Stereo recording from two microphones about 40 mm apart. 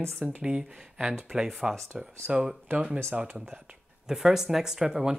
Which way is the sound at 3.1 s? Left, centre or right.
Right.